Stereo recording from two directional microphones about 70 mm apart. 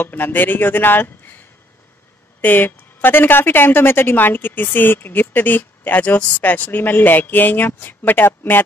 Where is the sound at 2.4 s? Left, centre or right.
Left.